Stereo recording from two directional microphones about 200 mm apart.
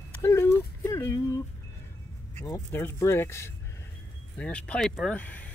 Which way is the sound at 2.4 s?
10° left (ahead or behind).